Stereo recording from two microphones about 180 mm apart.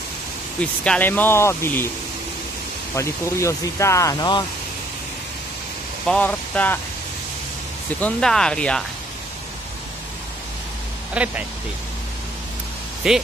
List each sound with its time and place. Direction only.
0.6 s speech: 5° left (ahead or behind)
3.0 s speech: 15° left (ahead or behind)
6.0 s speech: 5° left (ahead or behind)
8.0 s speech: 5° left (ahead or behind)
11.2 s speech: 5° right (ahead or behind)
13.0 s speech: 5° right (ahead or behind)